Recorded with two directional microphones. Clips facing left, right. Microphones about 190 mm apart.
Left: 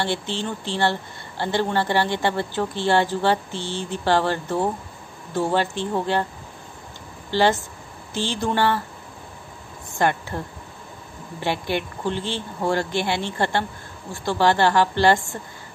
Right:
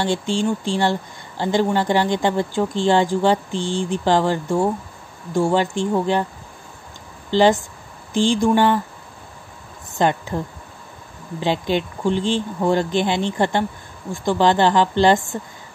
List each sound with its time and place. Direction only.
0.0 s speech: 15° right (ahead or behind)
7.2 s speech: 15° right (ahead or behind)
9.9 s speech: 20° right (ahead or behind)